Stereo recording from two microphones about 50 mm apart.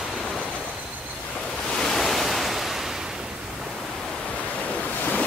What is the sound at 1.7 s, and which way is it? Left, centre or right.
Waves, centre.